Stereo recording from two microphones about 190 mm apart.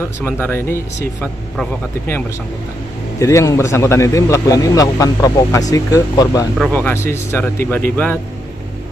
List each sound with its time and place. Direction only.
0.2 s a man's voice: 10° left (ahead or behind)